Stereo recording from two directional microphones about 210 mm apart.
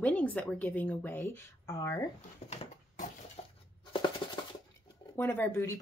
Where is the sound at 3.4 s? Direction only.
30° left (ahead or behind).